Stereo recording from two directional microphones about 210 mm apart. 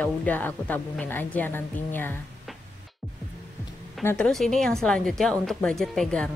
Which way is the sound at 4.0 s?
10° left (ahead or behind).